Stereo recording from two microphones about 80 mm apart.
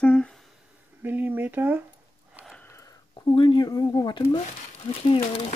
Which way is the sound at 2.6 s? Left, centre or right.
Left.